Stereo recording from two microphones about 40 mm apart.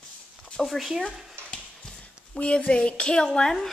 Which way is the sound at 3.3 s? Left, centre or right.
Centre.